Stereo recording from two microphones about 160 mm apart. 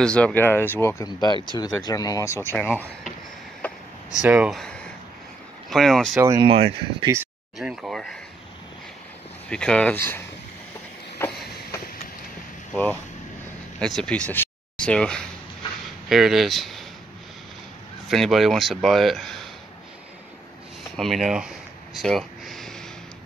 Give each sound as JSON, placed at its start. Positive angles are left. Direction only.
{"t": 0.0, "sound": "speech", "side_deg": 5}
{"t": 3.6, "sound": "a sound", "side_deg": 10}
{"t": 4.2, "sound": "speech", "side_deg": -5}
{"t": 6.1, "sound": "speech", "side_deg": -20}
{"t": 6.4, "sound": "speech", "side_deg": -35}
{"t": 7.5, "sound": "a sound", "side_deg": -5}
{"t": 9.5, "sound": "speech", "side_deg": 5}
{"t": 11.2, "sound": "vehicle", "side_deg": 15}
{"t": 13.7, "sound": "speech", "side_deg": 5}
{"t": 18.0, "sound": "speech", "side_deg": 0}
{"t": 20.9, "sound": "a sound", "side_deg": 0}